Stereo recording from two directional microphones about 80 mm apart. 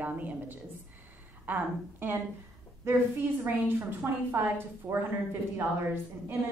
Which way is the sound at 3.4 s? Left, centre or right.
Right.